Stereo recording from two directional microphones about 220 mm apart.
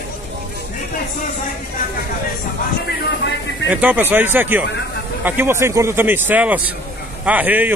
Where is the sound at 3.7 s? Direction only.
5° right (ahead or behind).